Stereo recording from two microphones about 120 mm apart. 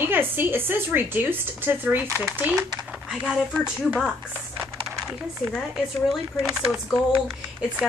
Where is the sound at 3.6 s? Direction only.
5° right (ahead or behind).